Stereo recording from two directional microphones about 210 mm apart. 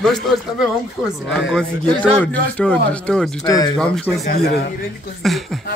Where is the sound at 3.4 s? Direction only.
20° left (ahead or behind).